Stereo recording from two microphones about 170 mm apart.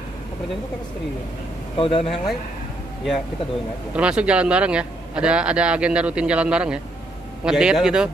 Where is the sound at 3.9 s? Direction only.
5° right (ahead or behind).